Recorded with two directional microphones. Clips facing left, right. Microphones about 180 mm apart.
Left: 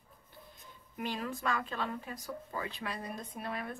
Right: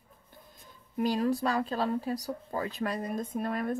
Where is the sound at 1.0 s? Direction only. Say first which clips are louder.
Right 10 dB; 40° right (ahead or behind).